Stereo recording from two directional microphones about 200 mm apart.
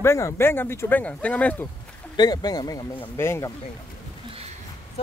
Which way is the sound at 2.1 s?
20° left (ahead or behind).